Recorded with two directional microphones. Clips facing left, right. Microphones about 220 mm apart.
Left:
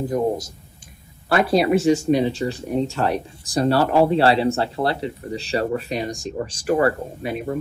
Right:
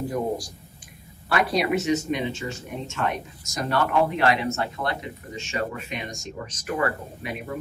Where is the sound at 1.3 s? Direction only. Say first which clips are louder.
Left 6 dB; 30° left (ahead or behind).